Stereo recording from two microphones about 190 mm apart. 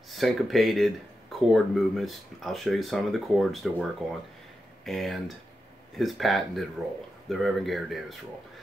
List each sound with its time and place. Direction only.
0.1 s speech: centre (ahead or behind)